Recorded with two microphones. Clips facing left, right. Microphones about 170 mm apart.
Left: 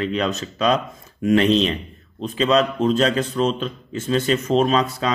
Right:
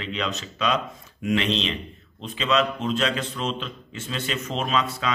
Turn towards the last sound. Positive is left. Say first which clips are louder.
# left 5 dB
turn(degrees=40)  # may be behind; listen again after turning